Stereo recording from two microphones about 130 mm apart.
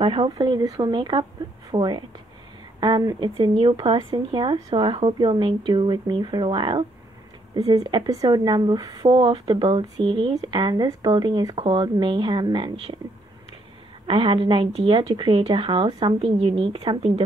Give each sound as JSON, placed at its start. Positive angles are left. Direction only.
{"t": 0.0, "sound": "speech", "side_deg": -45}
{"t": 0.3, "sound": "speech", "side_deg": -30}
{"t": 14.0, "sound": "speech", "side_deg": -40}
{"t": 16.2, "sound": "speech", "side_deg": -45}